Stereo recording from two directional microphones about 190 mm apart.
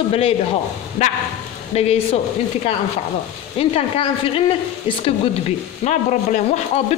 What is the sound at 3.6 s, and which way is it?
Speech, 30° left (ahead or behind).